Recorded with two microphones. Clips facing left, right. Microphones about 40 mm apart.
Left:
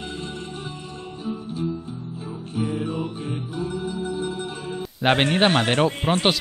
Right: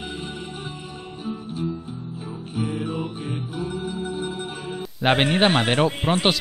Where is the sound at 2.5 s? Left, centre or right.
Centre.